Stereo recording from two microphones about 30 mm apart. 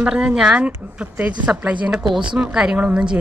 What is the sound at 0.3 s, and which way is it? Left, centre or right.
Speech, centre.